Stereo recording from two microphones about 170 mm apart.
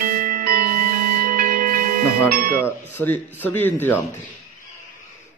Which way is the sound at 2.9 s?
10° left (ahead or behind).